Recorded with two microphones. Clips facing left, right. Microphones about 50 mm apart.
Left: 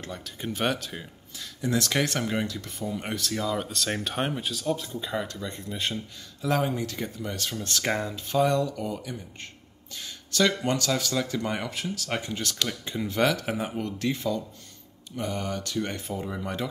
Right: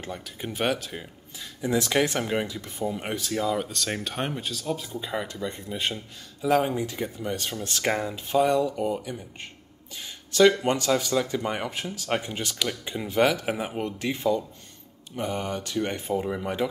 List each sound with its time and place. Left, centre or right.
0.0 s speech: centre
3.5 s speech: centre